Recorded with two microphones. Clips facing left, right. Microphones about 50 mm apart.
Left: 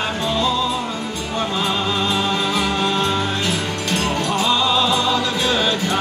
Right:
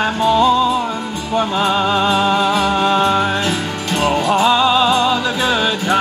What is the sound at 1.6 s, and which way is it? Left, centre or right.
Music, right.